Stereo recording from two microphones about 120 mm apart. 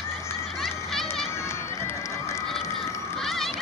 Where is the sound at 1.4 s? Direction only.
20° left (ahead or behind).